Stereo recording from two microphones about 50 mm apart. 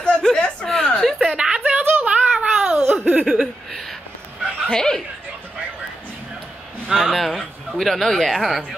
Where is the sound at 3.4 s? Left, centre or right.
Centre.